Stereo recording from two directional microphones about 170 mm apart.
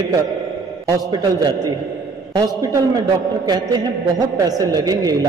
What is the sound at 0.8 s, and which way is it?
A man's voice, 20° right (ahead or behind).